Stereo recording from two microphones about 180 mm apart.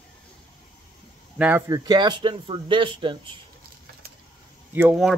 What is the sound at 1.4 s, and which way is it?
Speech, 10° right (ahead or behind).